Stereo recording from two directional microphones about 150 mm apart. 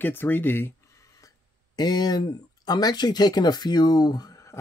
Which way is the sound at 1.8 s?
25° left (ahead or behind).